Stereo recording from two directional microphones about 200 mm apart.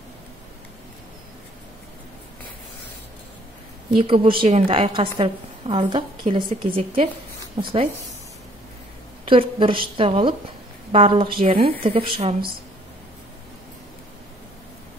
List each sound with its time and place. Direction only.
4.0 s a woman's voice: 25° right (ahead or behind)
9.3 s a woman's voice: 25° right (ahead or behind)